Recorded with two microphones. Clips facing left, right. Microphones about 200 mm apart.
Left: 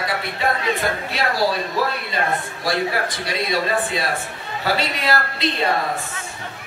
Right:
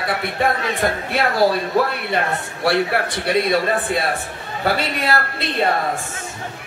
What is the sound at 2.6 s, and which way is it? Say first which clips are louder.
A man's voice: right 5 dB; 65° right (ahead or behind).